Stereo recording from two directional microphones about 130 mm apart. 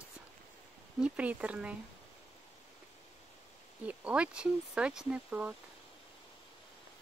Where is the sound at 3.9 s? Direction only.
10° right (ahead or behind).